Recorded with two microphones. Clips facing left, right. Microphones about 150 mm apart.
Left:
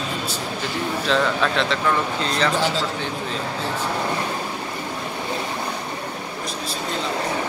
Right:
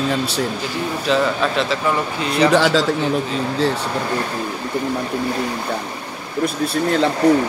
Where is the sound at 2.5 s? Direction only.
90° right.